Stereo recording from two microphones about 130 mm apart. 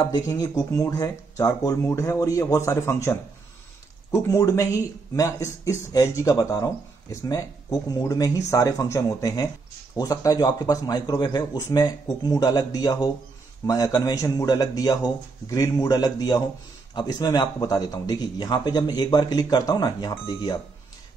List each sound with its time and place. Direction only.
0.1 s speech: 30° left (ahead or behind)